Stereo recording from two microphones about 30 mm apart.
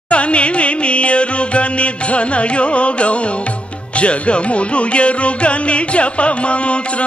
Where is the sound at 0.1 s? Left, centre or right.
Left.